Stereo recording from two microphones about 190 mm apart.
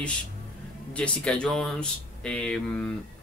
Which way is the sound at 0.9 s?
5° left (ahead or behind).